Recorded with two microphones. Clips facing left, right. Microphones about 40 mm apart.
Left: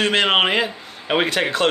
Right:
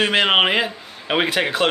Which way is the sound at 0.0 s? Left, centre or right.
Centre.